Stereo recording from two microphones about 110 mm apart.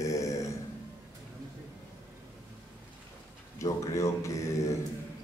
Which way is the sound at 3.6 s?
30° left (ahead or behind).